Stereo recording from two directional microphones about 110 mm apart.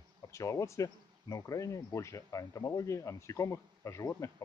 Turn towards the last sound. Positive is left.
turn(degrees=30)  # may be behind; listen again after turning